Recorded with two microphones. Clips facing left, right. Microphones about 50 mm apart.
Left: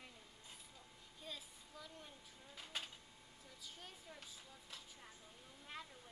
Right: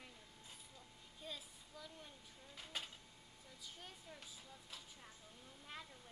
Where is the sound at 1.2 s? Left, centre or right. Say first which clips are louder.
Right 1 dB; centre.